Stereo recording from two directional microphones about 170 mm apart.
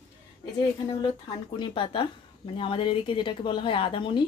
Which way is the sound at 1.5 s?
30° left (ahead or behind).